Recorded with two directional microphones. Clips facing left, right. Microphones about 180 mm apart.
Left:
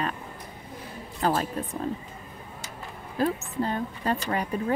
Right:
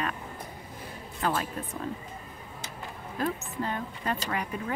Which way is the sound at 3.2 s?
35° left (ahead or behind).